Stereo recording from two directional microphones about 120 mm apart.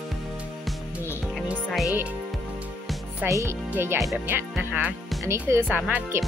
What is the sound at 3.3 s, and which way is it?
A child's voice, 25° right (ahead or behind).